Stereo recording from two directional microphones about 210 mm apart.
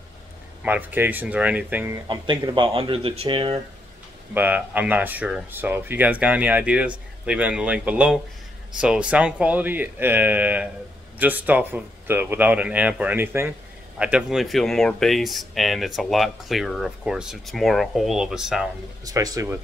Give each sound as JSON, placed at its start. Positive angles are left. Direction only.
{"t": 0.6, "sound": "speech", "side_deg": -10}
{"t": 2.0, "sound": "speech", "side_deg": -20}
{"t": 4.3, "sound": "speech", "side_deg": -10}
{"t": 19.0, "sound": "speech", "side_deg": -15}